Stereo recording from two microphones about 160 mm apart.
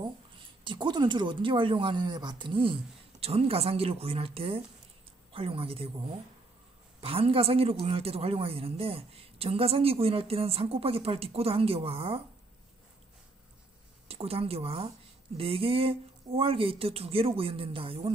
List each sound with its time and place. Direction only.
0.7 s speech: 30° right (ahead or behind)
14.0 s speech: 40° right (ahead or behind)